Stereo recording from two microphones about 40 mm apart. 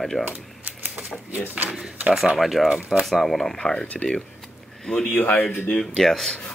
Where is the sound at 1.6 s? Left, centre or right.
Right.